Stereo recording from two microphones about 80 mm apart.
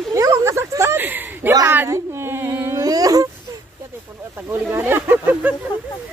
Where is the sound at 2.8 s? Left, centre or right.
Right.